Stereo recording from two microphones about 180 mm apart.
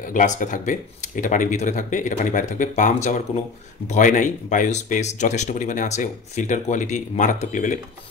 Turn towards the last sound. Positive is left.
turn(degrees=45)  # may be behind; listen again after turning